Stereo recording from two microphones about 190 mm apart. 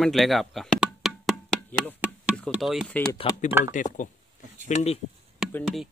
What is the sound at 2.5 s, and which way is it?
Chopping, centre (ahead or behind).